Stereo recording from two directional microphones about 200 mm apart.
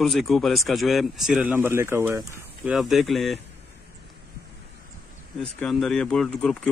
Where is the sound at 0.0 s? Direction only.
Centre (ahead or behind).